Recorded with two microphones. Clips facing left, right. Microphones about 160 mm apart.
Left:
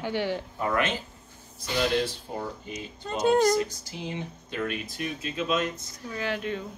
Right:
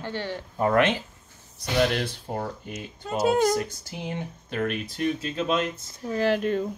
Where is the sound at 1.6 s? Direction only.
65° right (ahead or behind).